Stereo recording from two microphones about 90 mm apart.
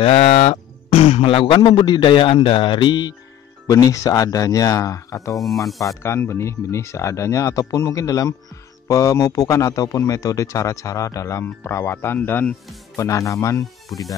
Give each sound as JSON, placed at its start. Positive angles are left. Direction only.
{"t": 0.0, "sound": "a man's voice", "side_deg": 90}
{"t": 3.6, "sound": "a man's voice", "side_deg": 40}
{"t": 5.3, "sound": "speech", "side_deg": 0}
{"t": 6.0, "sound": "a man's voice", "side_deg": 30}
{"t": 11.4, "sound": "speech", "side_deg": 25}
{"t": 12.9, "sound": "a man's voice", "side_deg": 35}